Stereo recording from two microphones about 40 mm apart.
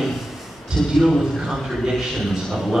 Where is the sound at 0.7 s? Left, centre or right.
Centre.